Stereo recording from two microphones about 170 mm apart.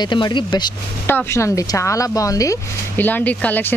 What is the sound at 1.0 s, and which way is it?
Speech, 15° left (ahead or behind).